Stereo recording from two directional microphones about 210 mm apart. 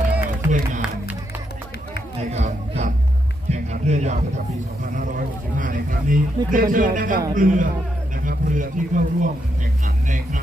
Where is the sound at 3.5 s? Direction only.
35° right (ahead or behind).